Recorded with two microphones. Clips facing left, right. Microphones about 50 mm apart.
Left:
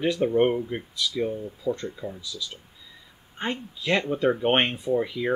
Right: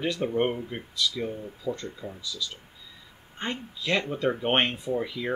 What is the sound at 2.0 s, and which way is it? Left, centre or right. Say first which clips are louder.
Speech: left 5 dB; left.